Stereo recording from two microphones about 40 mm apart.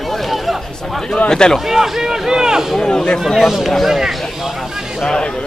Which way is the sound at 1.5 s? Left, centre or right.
Centre.